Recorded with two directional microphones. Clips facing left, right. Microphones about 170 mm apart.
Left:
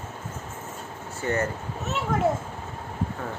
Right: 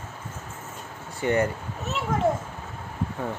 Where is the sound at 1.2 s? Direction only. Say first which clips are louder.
Right 3 dB; 15° right (ahead or behind).